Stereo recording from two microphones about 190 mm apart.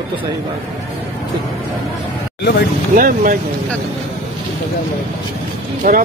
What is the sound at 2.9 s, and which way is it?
Speech, 45° right (ahead or behind).